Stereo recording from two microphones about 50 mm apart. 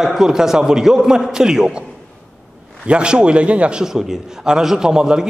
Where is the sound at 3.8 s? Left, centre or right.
Centre.